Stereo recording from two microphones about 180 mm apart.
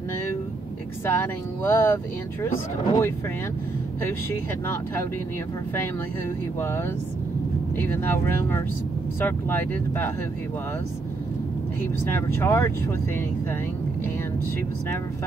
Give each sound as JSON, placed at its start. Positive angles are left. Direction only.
{"t": 1.0, "sound": "speech", "side_deg": 15}
{"t": 7.8, "sound": "speech", "side_deg": 10}
{"t": 12.1, "sound": "speech", "side_deg": 15}